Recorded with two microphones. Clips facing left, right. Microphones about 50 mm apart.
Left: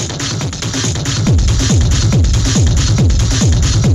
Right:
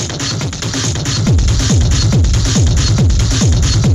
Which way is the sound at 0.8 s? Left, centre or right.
Left.